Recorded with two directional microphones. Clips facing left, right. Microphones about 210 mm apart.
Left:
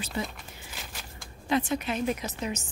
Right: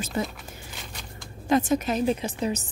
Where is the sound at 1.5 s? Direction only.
45° right (ahead or behind).